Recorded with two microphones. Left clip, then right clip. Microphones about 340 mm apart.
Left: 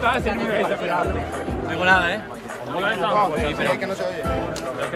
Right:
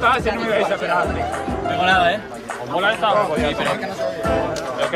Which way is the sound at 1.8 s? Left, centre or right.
Centre.